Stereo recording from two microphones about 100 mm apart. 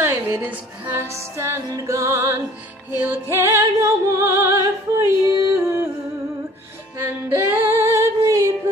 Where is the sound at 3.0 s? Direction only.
20° right (ahead or behind).